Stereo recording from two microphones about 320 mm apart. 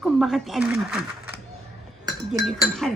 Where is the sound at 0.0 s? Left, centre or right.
Centre.